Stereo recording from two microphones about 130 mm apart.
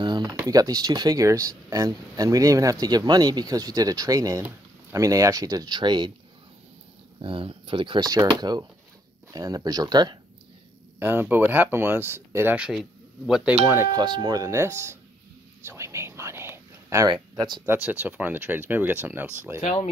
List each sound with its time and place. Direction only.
0.0 s a sound: 35° right (ahead or behind)
0.4 s speech: 30° right (ahead or behind)
7.2 s speech: 40° right (ahead or behind)
11.0 s speech: 15° right (ahead or behind)
12.5 s speech: 5° right (ahead or behind)
13.9 s speech: 35° right (ahead or behind)
15.6 s whispering: 20° right (ahead or behind)
17.1 s speech: 35° right (ahead or behind)
17.6 s speech: 15° right (ahead or behind)